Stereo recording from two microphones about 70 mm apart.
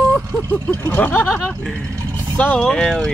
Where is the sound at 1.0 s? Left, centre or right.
Left.